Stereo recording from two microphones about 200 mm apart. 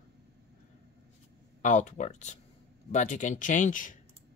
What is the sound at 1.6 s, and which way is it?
Speech, 40° left (ahead or behind).